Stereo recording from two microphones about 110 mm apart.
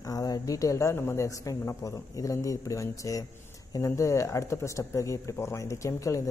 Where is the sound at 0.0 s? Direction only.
35° left (ahead or behind).